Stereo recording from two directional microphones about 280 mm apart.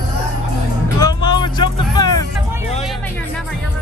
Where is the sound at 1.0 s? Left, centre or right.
Centre.